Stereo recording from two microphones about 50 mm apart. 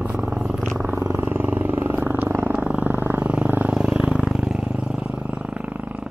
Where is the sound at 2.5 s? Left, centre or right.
Right.